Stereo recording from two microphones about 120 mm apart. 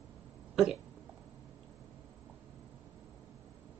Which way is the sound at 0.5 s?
5° right (ahead or behind).